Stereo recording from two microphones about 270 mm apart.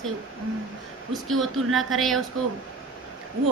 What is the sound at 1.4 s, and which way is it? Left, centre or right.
Speech, centre.